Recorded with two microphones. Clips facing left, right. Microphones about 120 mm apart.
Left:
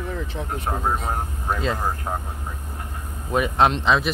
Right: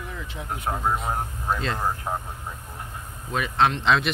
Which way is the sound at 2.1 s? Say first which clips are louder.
Left 1 dB; 5° left (ahead or behind).